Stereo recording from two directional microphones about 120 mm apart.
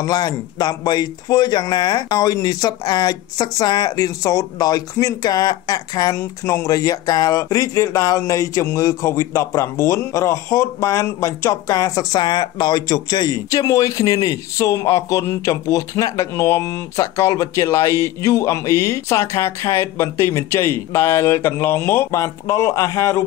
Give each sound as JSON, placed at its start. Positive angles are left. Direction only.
{"t": 0.0, "sound": "speech", "side_deg": 35}
{"t": 6.1, "sound": "speech", "side_deg": 25}